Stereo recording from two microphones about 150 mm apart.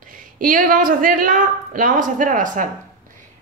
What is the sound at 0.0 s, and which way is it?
A woman's voice, 65° right (ahead or behind).